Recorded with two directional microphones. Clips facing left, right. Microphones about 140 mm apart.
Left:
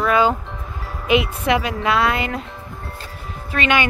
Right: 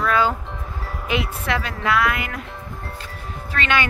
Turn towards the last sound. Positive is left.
turn(degrees=15)  # may be behind; listen again after turning